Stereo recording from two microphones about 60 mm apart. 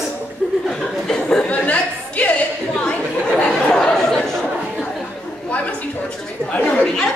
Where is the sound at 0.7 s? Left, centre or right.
Centre.